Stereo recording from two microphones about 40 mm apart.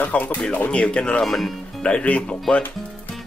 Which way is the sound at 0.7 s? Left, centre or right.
Left.